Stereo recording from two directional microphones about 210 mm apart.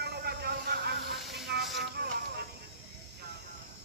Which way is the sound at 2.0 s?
50° right (ahead or behind).